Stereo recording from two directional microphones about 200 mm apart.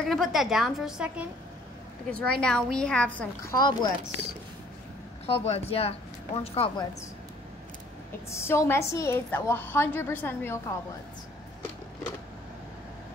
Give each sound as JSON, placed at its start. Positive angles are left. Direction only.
{"t": 0.1, "sound": "a woman's voice", "side_deg": 0}
{"t": 3.5, "sound": "speech", "side_deg": 20}
{"t": 5.2, "sound": "speech", "side_deg": 30}
{"t": 8.3, "sound": "a woman's voice", "side_deg": 15}